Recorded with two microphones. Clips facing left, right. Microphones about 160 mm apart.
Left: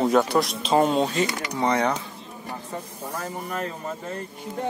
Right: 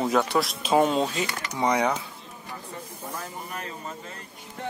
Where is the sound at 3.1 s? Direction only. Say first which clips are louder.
Left 6 dB; 50° left (ahead or behind).